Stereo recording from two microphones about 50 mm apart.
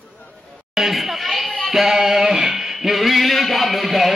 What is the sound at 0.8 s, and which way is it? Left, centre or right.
Speech, centre.